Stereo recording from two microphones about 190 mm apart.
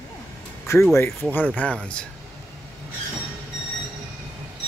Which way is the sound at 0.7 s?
15° left (ahead or behind).